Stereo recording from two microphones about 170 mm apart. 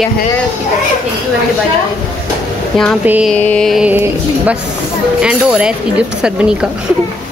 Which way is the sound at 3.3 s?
5° left (ahead or behind).